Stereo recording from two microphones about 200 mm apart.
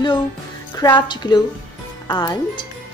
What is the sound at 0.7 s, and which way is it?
A woman's voice, 20° left (ahead or behind).